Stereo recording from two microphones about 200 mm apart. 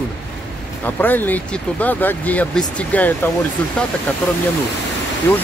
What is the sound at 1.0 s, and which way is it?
Speech, 10° left (ahead or behind).